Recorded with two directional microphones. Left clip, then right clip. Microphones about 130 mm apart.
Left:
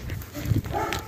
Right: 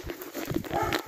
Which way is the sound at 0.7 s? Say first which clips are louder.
Left 1 dB; 10° left (ahead or behind).